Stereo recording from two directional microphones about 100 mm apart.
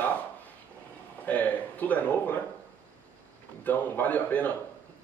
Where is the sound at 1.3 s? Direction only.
15° left (ahead or behind).